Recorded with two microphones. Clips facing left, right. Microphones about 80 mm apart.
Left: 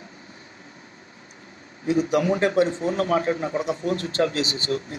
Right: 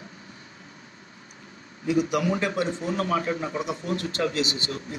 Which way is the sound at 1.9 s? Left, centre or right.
Left.